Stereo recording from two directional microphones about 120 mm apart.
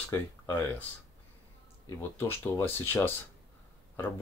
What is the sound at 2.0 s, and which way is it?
Speech, 20° left (ahead or behind).